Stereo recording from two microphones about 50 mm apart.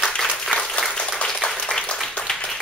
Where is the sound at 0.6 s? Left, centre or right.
Centre.